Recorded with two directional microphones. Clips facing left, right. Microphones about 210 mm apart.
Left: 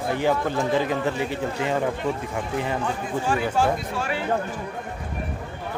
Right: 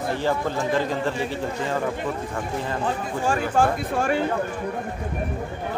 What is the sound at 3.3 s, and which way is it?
Speech, 50° right (ahead or behind).